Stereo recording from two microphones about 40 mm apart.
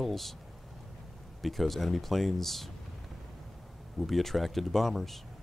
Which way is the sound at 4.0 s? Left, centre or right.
Centre.